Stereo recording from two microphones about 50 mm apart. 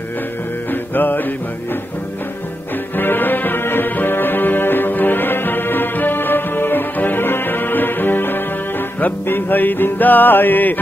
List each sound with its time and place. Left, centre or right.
0.7 s music: left
3.0 s music: left